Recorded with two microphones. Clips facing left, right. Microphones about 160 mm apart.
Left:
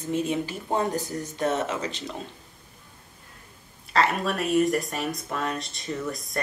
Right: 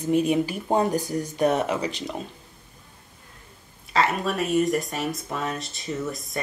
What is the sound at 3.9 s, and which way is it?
Speech, centre (ahead or behind).